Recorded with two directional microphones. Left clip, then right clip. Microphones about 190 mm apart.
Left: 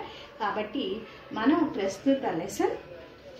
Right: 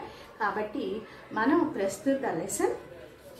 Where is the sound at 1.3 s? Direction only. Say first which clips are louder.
Even; centre (ahead or behind).